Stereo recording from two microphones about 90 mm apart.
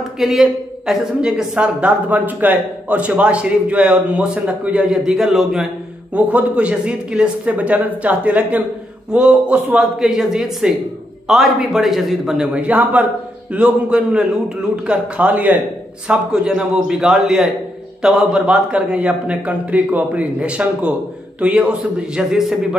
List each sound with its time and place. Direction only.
0.2 s speech: 5° right (ahead or behind)
4.9 s a man's voice: 5° right (ahead or behind)
6.1 s a man's voice: 15° right (ahead or behind)
12.5 s speech: 15° right (ahead or behind)
16.1 s speech: 5° right (ahead or behind)